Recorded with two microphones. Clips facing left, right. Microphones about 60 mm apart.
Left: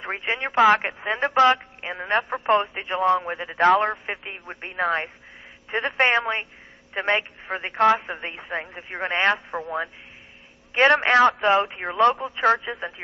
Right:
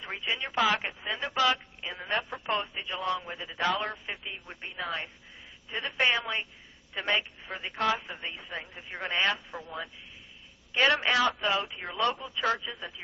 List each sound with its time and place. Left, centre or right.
0.0 s a woman's voice: left